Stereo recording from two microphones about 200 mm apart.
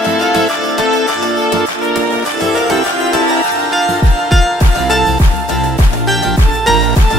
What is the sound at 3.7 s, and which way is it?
Music, centre (ahead or behind).